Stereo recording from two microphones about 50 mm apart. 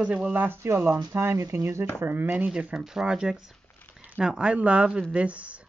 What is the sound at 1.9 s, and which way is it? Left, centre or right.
Speech, right.